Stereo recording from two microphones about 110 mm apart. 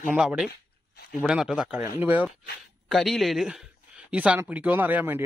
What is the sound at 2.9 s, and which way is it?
Speech, centre (ahead or behind).